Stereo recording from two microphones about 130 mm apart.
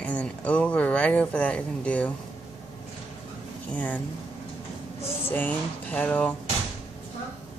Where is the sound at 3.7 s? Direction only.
10° left (ahead or behind).